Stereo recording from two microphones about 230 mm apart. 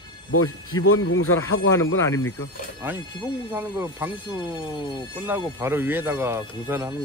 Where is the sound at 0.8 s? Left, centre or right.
Left.